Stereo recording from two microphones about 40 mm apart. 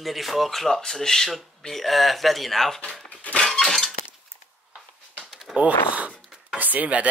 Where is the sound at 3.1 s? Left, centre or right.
Left.